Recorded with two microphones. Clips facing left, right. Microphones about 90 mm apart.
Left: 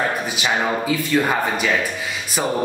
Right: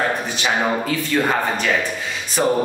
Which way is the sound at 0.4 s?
10° left (ahead or behind).